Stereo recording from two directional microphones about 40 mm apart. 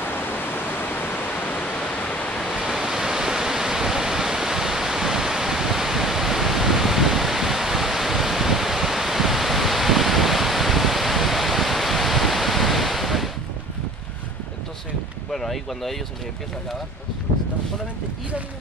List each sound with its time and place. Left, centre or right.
0.6 s pink noise: left
2.0 s waves: left
2.6 s waves: centre
15.3 s boat: centre